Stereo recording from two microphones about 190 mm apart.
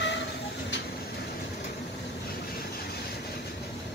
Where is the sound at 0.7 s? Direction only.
65° left (ahead or behind).